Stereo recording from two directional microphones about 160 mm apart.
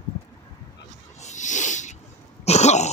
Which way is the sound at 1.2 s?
50° left (ahead or behind).